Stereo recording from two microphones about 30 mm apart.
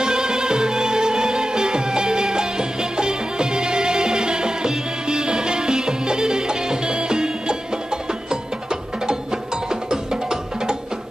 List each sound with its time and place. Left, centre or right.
0.0 s music: right